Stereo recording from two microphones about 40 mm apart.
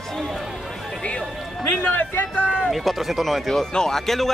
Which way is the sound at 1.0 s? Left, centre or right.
Left.